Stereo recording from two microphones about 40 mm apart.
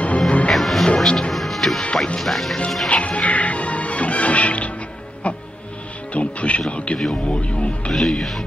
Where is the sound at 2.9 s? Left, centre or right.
Left.